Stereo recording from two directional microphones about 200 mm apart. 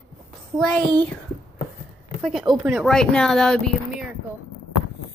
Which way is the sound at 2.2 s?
Centre (ahead or behind).